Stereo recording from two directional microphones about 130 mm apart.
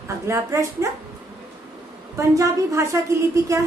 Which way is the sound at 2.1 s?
25° right (ahead or behind).